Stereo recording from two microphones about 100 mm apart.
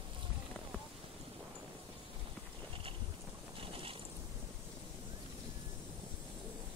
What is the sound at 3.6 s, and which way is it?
Boat, 65° right (ahead or behind).